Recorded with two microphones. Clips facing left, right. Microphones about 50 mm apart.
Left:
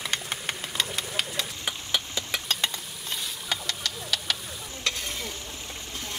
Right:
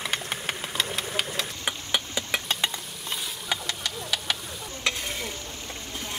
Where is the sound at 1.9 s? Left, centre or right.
Centre.